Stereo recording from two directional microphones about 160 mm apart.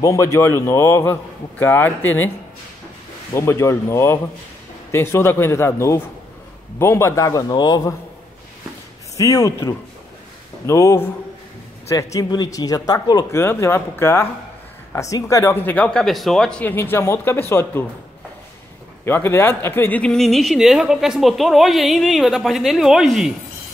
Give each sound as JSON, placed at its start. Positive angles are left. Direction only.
{"t": 0.0, "sound": "speech", "side_deg": 20}
{"t": 3.3, "sound": "speech", "side_deg": 15}
{"t": 9.1, "sound": "speech", "side_deg": 20}
{"t": 19.0, "sound": "speech", "side_deg": 15}